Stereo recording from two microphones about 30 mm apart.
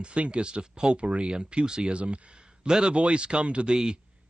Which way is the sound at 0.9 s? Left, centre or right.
Right.